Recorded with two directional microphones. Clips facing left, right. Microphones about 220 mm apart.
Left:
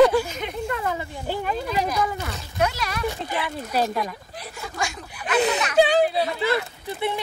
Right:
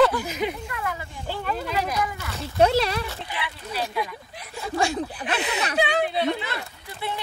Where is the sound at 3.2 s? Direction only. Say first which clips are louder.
Left 5 dB; 45° left (ahead or behind).